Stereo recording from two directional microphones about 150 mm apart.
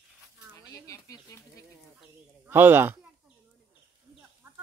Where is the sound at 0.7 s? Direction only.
20° left (ahead or behind).